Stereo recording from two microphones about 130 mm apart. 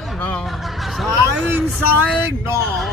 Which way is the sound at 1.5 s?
15° right (ahead or behind).